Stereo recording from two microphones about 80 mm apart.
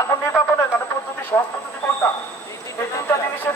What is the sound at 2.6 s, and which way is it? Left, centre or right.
Speech, left.